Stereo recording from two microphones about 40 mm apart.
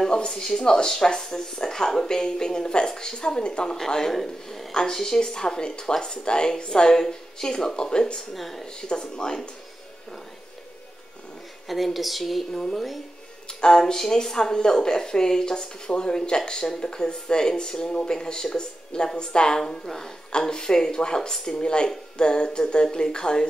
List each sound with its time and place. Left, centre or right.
0.0 s speech: centre
3.7 s speech: centre
8.4 s a woman's voice: centre
8.8 s speech: left
11.6 s a woman's voice: centre
13.6 s speech: centre
19.7 s speech: centre